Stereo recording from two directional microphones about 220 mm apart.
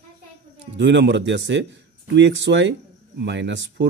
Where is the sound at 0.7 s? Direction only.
55° right (ahead or behind).